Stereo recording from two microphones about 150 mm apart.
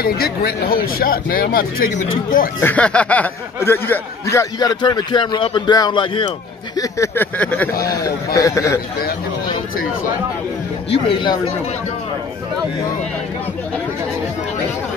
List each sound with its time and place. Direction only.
0.0 s speech: 90° left; by 2.5 s 70° left (ahead or behind)
2.6 s speech: 10° left (ahead or behind); by 6.3 s 30° left (ahead or behind)
6.8 s speech: 20° left (ahead or behind)
7.8 s speech: 25° left (ahead or behind)
10.9 s speech: 35° left (ahead or behind)